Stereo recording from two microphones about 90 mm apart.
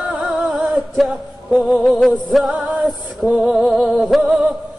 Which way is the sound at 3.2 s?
5° right (ahead or behind).